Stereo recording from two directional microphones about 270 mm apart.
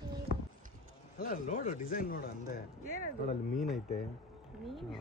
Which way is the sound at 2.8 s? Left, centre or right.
Right.